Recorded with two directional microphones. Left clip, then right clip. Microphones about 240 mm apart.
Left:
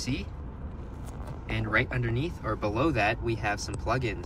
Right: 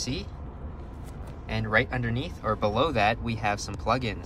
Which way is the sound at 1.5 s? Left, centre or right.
Centre.